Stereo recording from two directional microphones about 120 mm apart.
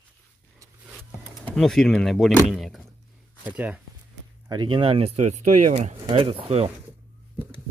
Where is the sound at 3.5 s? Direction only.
10° right (ahead or behind).